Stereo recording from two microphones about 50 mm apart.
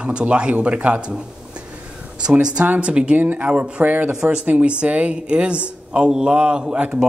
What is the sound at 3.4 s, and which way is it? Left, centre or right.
Speech, right.